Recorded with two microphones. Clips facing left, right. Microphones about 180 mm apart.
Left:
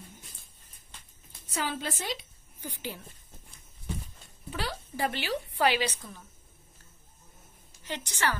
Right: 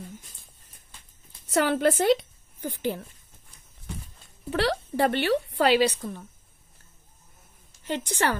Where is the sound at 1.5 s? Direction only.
70° right (ahead or behind); by 3.0 s 55° right (ahead or behind).